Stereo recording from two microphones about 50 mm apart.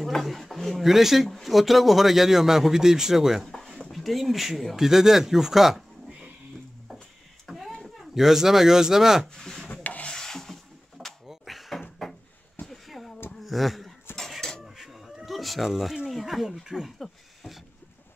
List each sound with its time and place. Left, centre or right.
0.0 s speech: centre
3.4 s speech: centre
7.4 s a sound: centre
8.1 s a man's voice: centre
9.3 s rub: centre
9.7 s rub: left
10.0 s a sound: centre
12.0 s drawer open or close: centre
12.6 s a sound: centre
16.1 s a man's voice: centre